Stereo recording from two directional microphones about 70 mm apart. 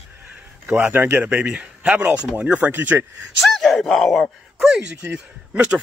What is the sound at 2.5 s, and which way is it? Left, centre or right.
Speech, right.